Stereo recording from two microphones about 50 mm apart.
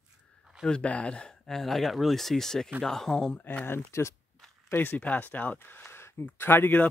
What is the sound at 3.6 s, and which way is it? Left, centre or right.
Speech, left.